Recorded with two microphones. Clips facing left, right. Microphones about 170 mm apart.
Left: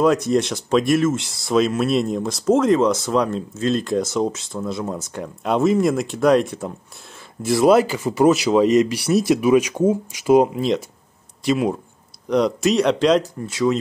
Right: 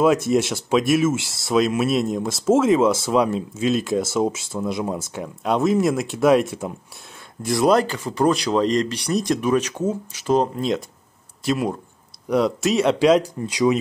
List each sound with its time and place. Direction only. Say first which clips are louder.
0.3 s speech: left 1 dB; 5° right (ahead or behind)